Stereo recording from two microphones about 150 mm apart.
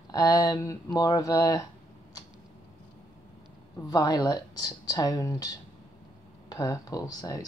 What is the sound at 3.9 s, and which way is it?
Speech, 25° left (ahead or behind).